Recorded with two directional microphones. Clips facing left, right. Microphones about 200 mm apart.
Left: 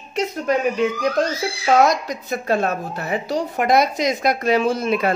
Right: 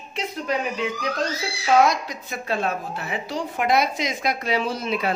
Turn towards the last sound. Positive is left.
turn(degrees=50)  # may be behind; listen again after turning